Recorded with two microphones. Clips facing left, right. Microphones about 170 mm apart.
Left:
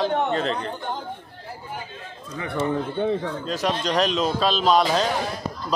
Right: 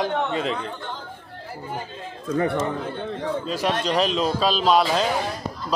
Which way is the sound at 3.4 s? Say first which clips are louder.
Right 2 dB; 10° right (ahead or behind).